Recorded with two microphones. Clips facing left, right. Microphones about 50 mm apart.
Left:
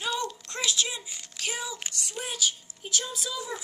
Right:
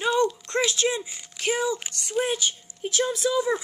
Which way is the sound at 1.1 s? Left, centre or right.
Centre.